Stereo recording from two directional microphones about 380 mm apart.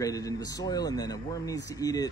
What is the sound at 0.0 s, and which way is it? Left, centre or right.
Speech, centre.